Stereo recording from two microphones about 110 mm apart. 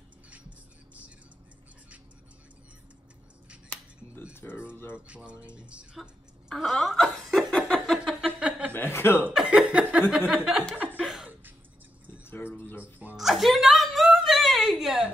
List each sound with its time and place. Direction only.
3.7 s finger snapping: 20° left (ahead or behind)
4.7 s speech: 20° left (ahead or behind)
5.0 s speech: 10° right (ahead or behind)
6.5 s laughter: centre (ahead or behind)
7.5 s a sound: 10° left (ahead or behind); by 8.7 s 10° right (ahead or behind)
8.7 s speech: 20° left (ahead or behind)
9.3 s speech: 5° right (ahead or behind)
10.8 s chuckle: 15° right (ahead or behind)
12.3 s a sound: 20° left (ahead or behind)
13.1 s a sound: centre (ahead or behind)